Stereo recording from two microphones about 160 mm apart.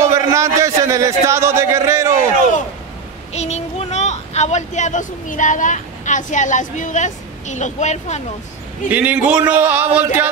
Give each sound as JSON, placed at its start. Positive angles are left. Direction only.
{"t": 0.0, "sound": "a man's voice", "side_deg": -20}
{"t": 3.3, "sound": "speech", "side_deg": 45}
{"t": 8.9, "sound": "speech", "side_deg": -10}